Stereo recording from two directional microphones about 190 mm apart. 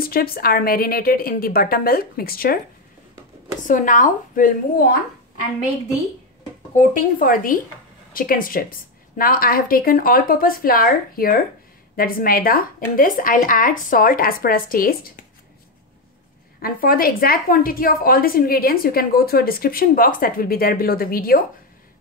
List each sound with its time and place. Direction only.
0.0 s a woman's voice: 50° left (ahead or behind)
3.6 s a woman's voice: 45° left (ahead or behind)
6.7 s a woman's voice: 45° left (ahead or behind)
16.6 s a woman's voice: 50° left (ahead or behind)